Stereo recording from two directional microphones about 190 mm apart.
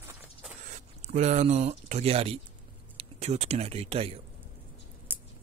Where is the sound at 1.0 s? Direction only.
35° right (ahead or behind).